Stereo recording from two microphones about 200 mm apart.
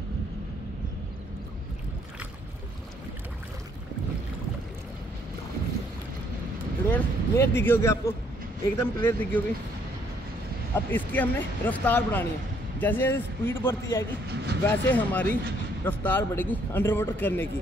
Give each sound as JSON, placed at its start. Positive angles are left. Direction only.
{"t": 6.9, "sound": "a man's voice", "side_deg": 10}
{"t": 10.9, "sound": "a man's voice", "side_deg": 10}
{"t": 14.2, "sound": "speech", "side_deg": -55}
{"t": 14.6, "sound": "a man's voice", "side_deg": 10}